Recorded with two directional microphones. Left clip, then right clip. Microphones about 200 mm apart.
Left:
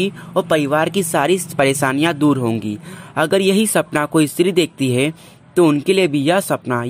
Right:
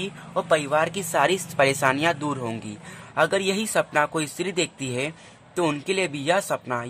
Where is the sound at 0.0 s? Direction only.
30° left (ahead or behind).